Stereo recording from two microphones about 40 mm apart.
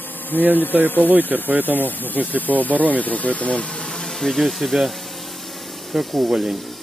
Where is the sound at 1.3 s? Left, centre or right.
Right.